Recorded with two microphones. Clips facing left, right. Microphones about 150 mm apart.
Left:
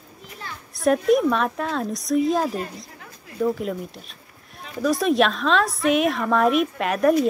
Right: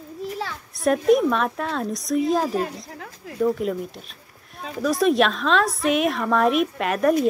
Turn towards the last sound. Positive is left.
turn(degrees=0)  # may be behind; listen again after turning